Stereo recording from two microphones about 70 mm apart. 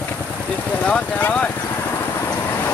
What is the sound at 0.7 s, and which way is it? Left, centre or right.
Vehicle, centre.